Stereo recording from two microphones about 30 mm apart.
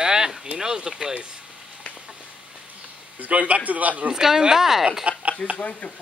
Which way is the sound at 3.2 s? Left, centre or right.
Right.